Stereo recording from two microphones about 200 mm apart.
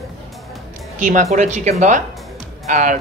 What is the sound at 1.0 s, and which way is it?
Speech, 40° right (ahead or behind).